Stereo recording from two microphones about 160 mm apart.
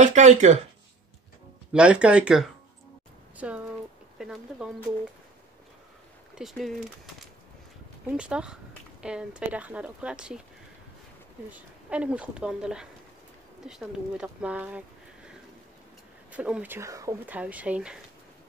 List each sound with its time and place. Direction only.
0.0 s speech: 45° right (ahead or behind)
1.7 s speech: 5° right (ahead or behind)
6.3 s speech: centre (ahead or behind)
8.1 s speech: 5° right (ahead or behind)
11.5 s speech: 10° right (ahead or behind)
16.3 s speech: 10° right (ahead or behind)
17.4 s speech: 10° right (ahead or behind)